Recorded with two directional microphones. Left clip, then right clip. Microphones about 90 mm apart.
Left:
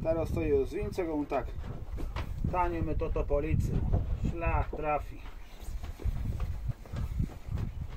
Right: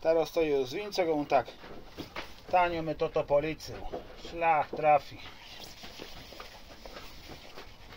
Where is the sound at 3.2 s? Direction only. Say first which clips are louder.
Right 5 dB; 10° right (ahead or behind).